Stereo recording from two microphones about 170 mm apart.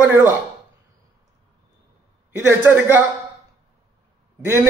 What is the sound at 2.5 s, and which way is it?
Speech, 15° right (ahead or behind).